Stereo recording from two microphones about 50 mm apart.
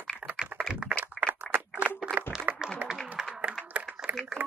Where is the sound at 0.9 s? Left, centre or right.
Right.